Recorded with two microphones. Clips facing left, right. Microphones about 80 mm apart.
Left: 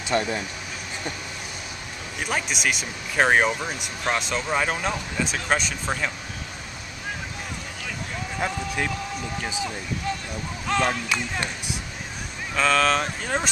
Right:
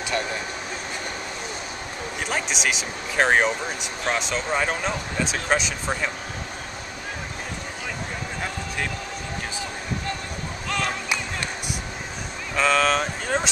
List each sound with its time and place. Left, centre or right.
0.1 s speech: left
2.2 s speech: centre
10.7 s a sound: centre
12.5 s speech: centre